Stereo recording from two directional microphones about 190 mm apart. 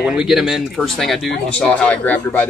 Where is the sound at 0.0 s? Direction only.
5° right (ahead or behind).